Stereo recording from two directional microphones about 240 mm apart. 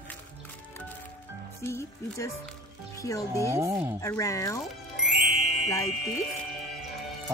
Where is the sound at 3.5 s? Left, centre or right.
Centre.